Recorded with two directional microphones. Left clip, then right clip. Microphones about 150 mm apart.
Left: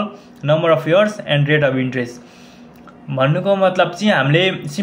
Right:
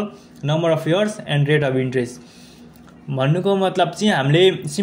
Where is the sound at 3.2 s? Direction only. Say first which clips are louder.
Left 4 dB; 40° right (ahead or behind).